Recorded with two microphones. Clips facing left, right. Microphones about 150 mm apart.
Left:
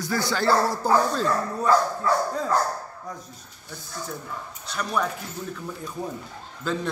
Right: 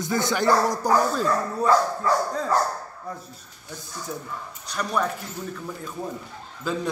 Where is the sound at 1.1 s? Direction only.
5° right (ahead or behind).